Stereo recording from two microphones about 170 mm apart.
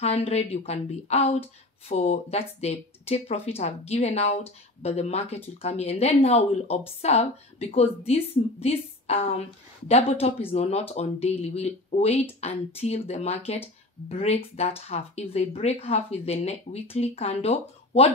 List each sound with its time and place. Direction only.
0.0 s speech: 35° left (ahead or behind)